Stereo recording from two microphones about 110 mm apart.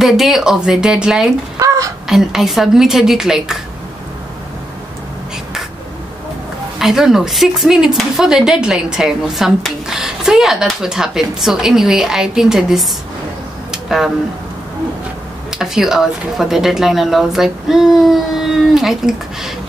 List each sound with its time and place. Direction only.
0.0 s speech: 5° right (ahead or behind)
1.6 s a sound: 30° right (ahead or behind)
2.0 s speech: 5° right (ahead or behind)
6.8 s speech: 5° right (ahead or behind)
13.7 s a sound: 5° right (ahead or behind)
15.5 s speech: 5° right (ahead or behind)